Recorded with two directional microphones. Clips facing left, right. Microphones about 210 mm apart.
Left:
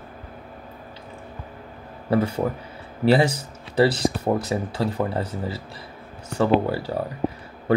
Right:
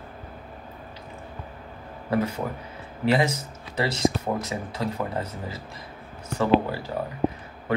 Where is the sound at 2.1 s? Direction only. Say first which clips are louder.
Left 4 dB; 30° left (ahead or behind).